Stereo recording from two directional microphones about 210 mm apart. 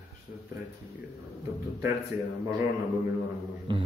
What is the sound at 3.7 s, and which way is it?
Music, 25° right (ahead or behind).